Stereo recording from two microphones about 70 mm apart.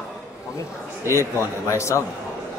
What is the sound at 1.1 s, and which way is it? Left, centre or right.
Speech, left.